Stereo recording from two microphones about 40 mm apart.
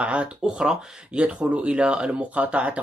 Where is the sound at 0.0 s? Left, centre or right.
Right.